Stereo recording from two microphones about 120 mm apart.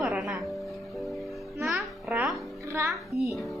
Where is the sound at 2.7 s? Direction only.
25° right (ahead or behind).